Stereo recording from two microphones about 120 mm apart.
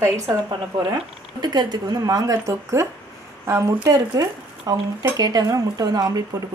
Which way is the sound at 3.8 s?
30° right (ahead or behind).